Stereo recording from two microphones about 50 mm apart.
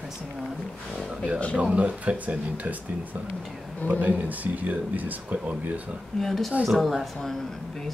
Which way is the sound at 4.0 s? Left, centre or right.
Right.